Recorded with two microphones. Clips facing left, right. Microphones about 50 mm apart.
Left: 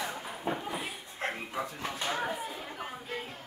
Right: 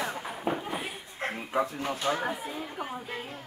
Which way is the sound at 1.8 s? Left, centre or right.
Right.